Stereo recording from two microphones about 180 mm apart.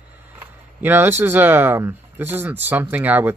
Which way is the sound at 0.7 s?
10° right (ahead or behind).